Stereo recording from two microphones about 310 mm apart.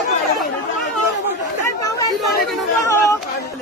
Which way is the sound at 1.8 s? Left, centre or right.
Centre.